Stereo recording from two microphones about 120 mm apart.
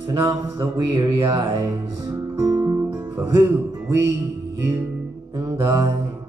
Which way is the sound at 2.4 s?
30° right (ahead or behind).